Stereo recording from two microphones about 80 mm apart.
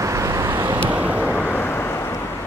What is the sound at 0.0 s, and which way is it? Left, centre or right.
Vehicle, right.